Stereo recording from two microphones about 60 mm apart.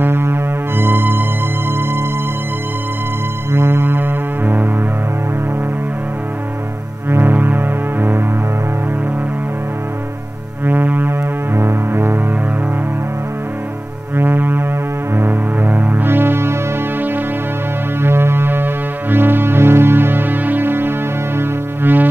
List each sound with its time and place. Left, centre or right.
0.0 s music: right
3.5 s music: right
7.1 s music: right
10.6 s music: right
14.1 s music: right
18.0 s music: right